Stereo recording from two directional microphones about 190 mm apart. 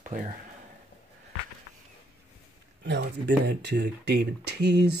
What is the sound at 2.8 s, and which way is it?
Speech, 65° right (ahead or behind).